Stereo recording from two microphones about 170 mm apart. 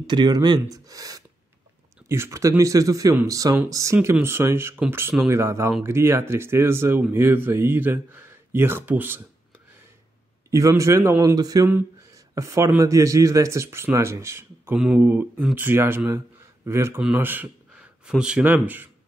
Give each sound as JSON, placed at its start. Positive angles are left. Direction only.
{"t": 0.0, "sound": "speech", "side_deg": -25}
{"t": 10.5, "sound": "speech", "side_deg": -15}